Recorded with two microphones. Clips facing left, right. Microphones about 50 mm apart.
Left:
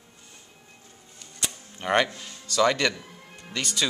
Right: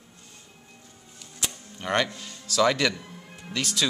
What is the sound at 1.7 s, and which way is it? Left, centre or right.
Music, centre.